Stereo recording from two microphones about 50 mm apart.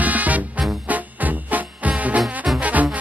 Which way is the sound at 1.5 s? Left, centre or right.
Right.